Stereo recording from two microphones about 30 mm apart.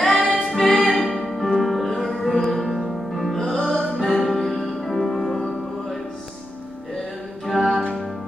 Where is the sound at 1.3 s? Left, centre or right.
Centre.